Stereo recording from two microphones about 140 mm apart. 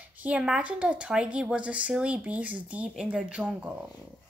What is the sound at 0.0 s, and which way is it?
Speech, 10° right (ahead or behind).